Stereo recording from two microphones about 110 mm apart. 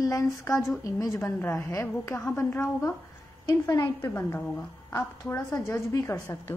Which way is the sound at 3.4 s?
35° left (ahead or behind).